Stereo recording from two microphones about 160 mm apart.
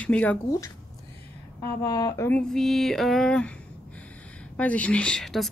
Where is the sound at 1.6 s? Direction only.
20° left (ahead or behind).